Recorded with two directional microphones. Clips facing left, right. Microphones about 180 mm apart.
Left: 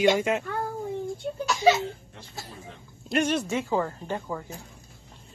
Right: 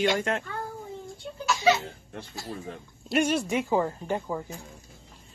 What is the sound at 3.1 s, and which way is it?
Speech, 10° right (ahead or behind).